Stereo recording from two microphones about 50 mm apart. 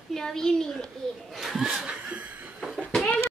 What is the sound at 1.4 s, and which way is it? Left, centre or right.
Speech, centre.